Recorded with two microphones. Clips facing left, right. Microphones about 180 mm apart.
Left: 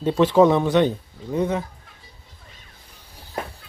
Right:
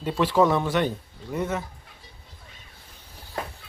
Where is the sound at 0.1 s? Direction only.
20° left (ahead or behind).